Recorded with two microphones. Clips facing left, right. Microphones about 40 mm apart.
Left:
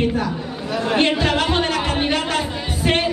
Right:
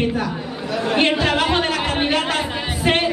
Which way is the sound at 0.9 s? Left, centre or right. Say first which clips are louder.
Even; centre.